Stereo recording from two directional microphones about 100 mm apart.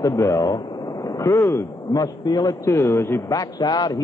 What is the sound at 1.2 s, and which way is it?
Speech, 25° left (ahead or behind).